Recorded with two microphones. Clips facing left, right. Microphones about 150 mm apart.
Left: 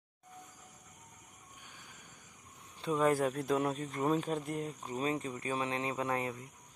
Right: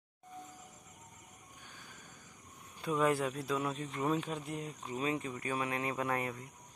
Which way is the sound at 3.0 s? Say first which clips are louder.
Left 2 dB; 40° left (ahead or behind).